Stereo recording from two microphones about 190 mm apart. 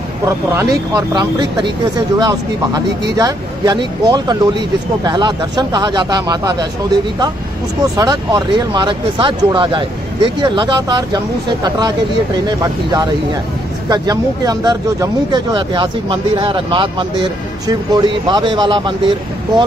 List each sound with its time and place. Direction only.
0.6 s speech: 20° right (ahead or behind)
7.8 s speech: 20° right (ahead or behind)